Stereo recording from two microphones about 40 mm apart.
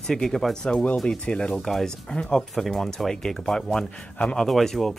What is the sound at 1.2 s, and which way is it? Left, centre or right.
Speech, left.